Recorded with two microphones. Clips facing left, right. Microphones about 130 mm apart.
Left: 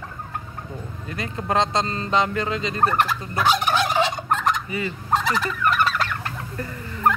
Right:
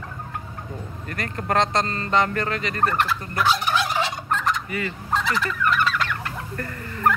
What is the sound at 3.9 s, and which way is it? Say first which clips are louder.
Gobble: left 4 dB; 20° left (ahead or behind).